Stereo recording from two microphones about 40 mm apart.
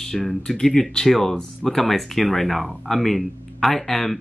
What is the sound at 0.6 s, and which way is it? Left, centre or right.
Speech, centre.